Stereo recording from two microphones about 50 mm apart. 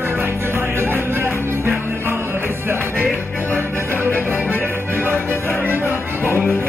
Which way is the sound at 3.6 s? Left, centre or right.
Right.